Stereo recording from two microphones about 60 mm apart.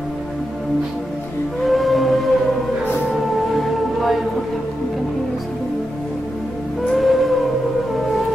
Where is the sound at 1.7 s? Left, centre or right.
Centre.